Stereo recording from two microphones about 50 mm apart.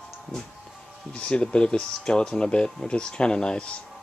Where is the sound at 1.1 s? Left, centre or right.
Left.